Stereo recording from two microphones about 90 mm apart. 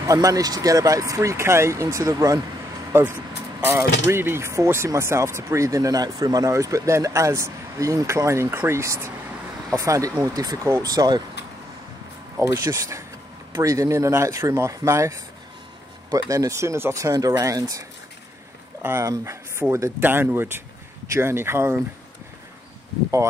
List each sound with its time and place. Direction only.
0.0 s speech: 40° right (ahead or behind)
2.9 s speech: 25° right (ahead or behind); by 11.2 s 50° right (ahead or behind)
12.4 s speech: 35° right (ahead or behind)
18.8 s speech: 25° right (ahead or behind)